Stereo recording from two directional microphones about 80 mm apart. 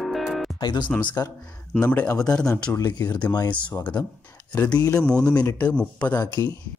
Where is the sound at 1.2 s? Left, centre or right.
Left.